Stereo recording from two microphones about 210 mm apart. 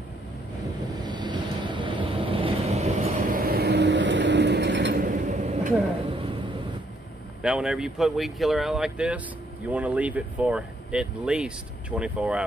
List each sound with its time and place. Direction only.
1.0 s vehicle: 20° right (ahead or behind); by 4.9 s 55° right (ahead or behind)
4.9 s vehicle: 35° right (ahead or behind)
6.1 s a sound: 25° right (ahead or behind)
7.4 s speech: 5° right (ahead or behind)